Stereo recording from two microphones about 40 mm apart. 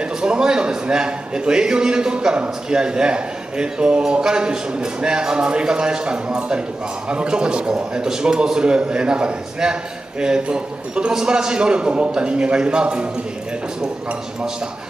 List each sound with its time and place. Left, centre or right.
0.0 s a man's voice: right